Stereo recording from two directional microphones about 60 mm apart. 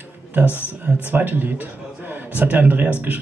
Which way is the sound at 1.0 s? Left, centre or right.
Right.